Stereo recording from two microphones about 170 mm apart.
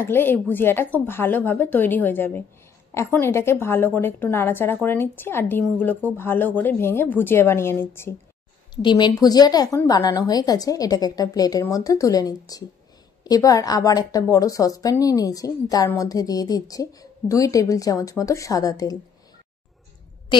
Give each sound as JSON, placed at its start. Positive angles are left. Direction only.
{"t": 0.0, "sound": "speech", "side_deg": 10}
{"t": 8.8, "sound": "a woman's voice", "side_deg": 25}